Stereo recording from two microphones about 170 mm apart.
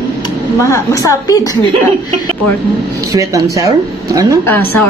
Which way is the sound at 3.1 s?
20° right (ahead or behind).